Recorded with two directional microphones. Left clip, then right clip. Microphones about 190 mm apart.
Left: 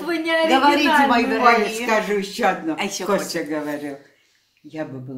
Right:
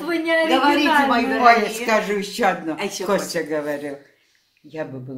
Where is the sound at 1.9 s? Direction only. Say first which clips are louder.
Even; 45° right (ahead or behind).